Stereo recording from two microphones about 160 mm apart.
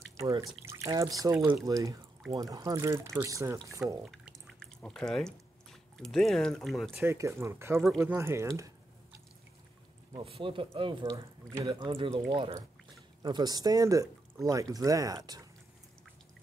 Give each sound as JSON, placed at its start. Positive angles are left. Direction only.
{"t": 0.2, "sound": "speech", "side_deg": -20}
{"t": 4.0, "sound": "drip", "side_deg": 0}
{"t": 6.9, "sound": "speech", "side_deg": -15}
{"t": 10.1, "sound": "speech", "side_deg": -35}